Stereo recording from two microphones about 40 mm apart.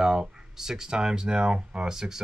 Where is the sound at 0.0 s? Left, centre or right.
Centre.